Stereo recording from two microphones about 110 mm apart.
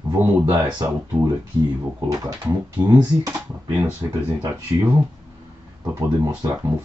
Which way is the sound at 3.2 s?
30° right (ahead or behind).